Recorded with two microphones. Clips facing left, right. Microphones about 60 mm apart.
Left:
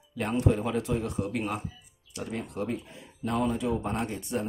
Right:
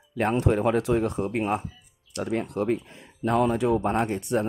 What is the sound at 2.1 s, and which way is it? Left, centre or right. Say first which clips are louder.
Speech: right 7 dB; right.